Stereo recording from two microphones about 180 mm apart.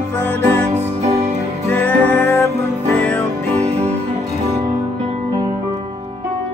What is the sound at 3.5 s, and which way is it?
Music, 35° right (ahead or behind).